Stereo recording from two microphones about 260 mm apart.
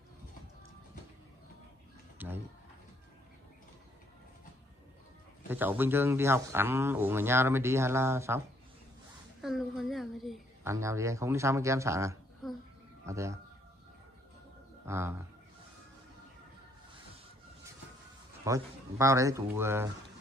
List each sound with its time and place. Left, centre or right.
2.1 s music: centre
5.5 s speech: centre
9.4 s a sound: centre
10.7 s speech: centre
12.4 s a sound: centre
13.0 s a man's voice: centre
14.9 s speech: centre
18.4 s speech: centre